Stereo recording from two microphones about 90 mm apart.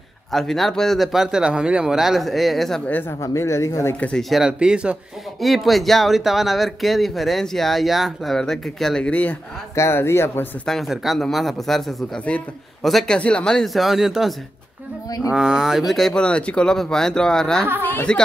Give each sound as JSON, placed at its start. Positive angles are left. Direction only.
{"t": 0.3, "sound": "speech", "side_deg": 5}
{"t": 2.9, "sound": "speech", "side_deg": 20}
{"t": 3.2, "sound": "speech", "side_deg": 35}
{"t": 4.2, "sound": "speech", "side_deg": -5}
{"t": 5.4, "sound": "speech", "side_deg": 0}
{"t": 9.8, "sound": "speech", "side_deg": 30}
{"t": 10.6, "sound": "speech", "side_deg": 0}
{"t": 12.3, "sound": "speech", "side_deg": 10}
{"t": 13.7, "sound": "speech", "side_deg": -5}
{"t": 15.9, "sound": "speech", "side_deg": 5}